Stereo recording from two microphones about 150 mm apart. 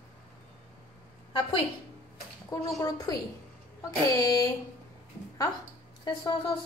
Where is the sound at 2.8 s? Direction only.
25° left (ahead or behind).